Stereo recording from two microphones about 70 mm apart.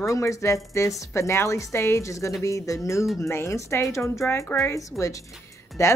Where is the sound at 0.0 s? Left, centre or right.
Left.